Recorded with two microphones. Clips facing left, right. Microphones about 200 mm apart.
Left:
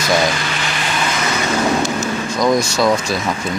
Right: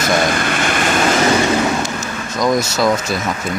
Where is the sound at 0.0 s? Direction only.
50° right (ahead or behind).